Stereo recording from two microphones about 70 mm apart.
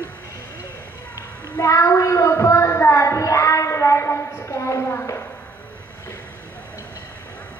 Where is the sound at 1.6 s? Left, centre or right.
Left.